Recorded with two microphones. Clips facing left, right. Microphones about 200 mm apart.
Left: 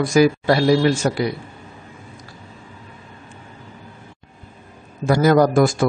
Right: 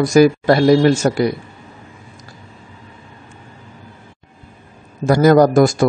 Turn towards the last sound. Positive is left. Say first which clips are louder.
# right 4 dB
turn(degrees=-40)  # may be behind; listen again after turning